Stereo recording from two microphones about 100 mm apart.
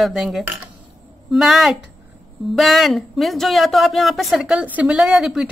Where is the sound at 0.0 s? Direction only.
5° right (ahead or behind).